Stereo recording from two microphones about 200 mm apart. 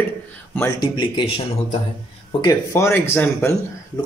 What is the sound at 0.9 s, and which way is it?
Speech, 25° left (ahead or behind).